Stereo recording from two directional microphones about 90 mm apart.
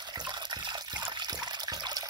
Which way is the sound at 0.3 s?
50° right (ahead or behind).